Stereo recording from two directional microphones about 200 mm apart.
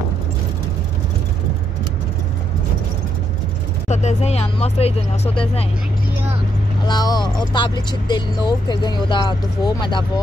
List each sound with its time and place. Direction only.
3.9 s speech: 35° left (ahead or behind)
6.9 s speech: 20° left (ahead or behind)